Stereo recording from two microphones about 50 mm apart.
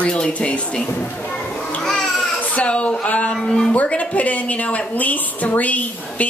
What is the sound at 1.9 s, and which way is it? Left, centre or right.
Baby cry, centre.